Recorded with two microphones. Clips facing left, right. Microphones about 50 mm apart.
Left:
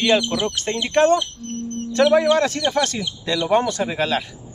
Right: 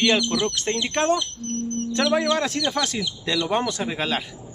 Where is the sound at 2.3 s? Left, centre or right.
Centre.